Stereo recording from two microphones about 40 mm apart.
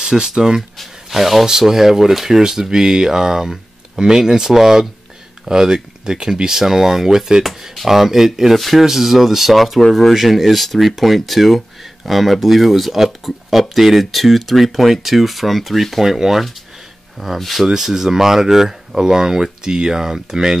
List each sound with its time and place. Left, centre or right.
0.0 s speech: centre
17.6 s speech: centre